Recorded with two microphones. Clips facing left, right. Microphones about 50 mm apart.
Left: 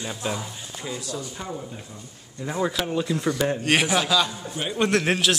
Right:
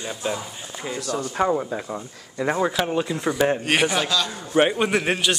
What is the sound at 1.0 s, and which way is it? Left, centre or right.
Speech, right.